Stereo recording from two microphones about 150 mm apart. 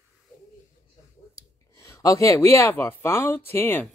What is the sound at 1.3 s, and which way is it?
Speech, 20° left (ahead or behind).